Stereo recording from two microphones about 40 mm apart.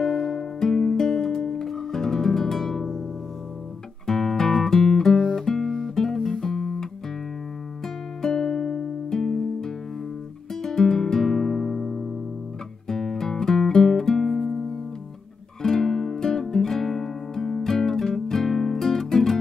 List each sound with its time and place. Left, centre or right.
0.0 s music: centre
4.0 s music: centre
8.2 s music: centre
15.6 s music: centre